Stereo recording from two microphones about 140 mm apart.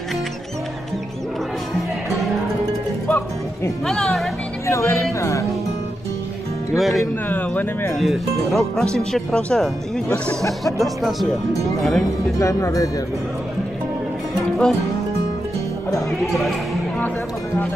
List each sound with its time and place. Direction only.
3.1 s music: 15° left (ahead or behind)
3.8 s speech: 5° left (ahead or behind)
4.6 s speech: 20° left (ahead or behind)
6.8 s speech: centre (ahead or behind)
7.2 s speech: 15° left (ahead or behind)
7.9 s speech: centre (ahead or behind)
12.4 s speech: 20° left (ahead or behind)
14.3 s music: 5° left (ahead or behind)